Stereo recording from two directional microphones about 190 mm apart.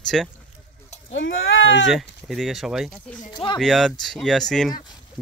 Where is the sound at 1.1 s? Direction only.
85° left.